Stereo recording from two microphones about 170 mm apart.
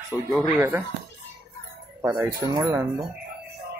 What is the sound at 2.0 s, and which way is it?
Speech, 10° right (ahead or behind).